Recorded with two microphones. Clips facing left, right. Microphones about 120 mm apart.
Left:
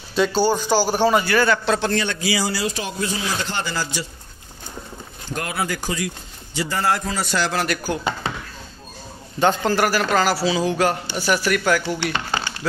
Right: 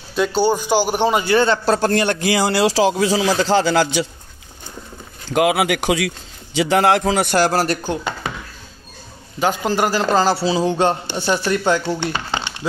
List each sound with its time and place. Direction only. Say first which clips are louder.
0.1 s a man's voice: right 1 dB; 10° right (ahead or behind)
1.7 s a man's voice: right 4 dB; 45° right (ahead or behind); by 4.1 s 80° right
5.3 s speech: right 10 dB; 90° right; by 7.6 s 50° right (ahead or behind)
7.6 s a man's voice: right 3 dB; 25° right (ahead or behind)
9.4 s a man's voice: left 1 dB; 10° right (ahead or behind)
9.8 s a man's voice: right 2 dB; 20° right (ahead or behind)
12.1 s a sound: right 1 dB; 20° right (ahead or behind)